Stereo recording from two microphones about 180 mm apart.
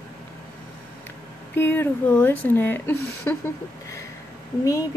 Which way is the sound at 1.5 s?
10° left (ahead or behind).